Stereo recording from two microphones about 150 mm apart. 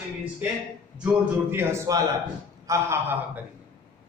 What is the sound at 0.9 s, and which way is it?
A man's voice, 10° right (ahead or behind).